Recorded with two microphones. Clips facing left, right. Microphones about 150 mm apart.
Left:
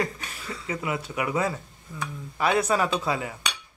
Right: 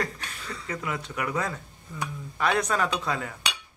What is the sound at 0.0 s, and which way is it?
Speech, 5° left (ahead or behind).